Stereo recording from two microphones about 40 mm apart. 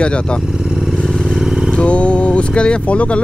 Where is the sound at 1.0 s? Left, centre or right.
Centre.